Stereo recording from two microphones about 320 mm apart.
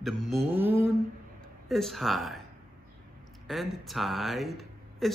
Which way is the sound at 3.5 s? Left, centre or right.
Centre.